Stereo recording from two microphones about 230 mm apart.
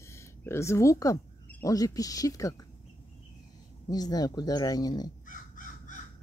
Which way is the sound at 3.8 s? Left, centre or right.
Centre.